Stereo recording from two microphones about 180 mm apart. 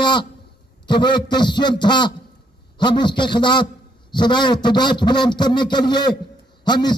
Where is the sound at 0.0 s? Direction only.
25° left (ahead or behind).